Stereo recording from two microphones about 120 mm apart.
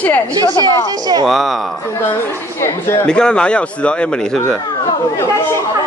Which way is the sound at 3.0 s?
5° left (ahead or behind).